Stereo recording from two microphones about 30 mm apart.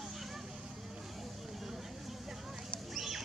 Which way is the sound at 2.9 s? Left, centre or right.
Centre.